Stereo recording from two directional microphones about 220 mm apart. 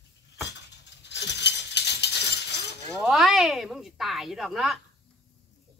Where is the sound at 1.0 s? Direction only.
50° left (ahead or behind).